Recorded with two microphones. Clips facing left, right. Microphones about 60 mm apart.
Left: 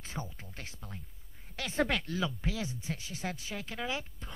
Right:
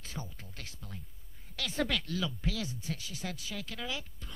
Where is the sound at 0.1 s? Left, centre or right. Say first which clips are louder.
Left 3 dB; left.